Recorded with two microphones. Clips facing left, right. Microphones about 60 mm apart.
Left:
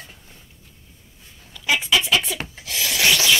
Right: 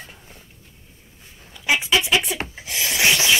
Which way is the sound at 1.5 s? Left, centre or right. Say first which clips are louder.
Right 1 dB; right.